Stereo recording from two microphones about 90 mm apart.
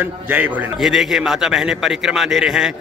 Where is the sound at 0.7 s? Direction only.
5° right (ahead or behind).